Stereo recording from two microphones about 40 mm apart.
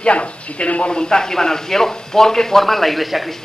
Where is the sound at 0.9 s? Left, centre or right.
Centre.